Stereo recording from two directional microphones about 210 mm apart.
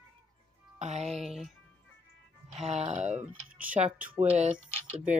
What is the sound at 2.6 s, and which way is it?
Speech, 30° right (ahead or behind).